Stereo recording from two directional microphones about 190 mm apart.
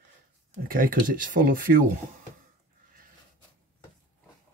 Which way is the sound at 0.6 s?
50° right (ahead or behind).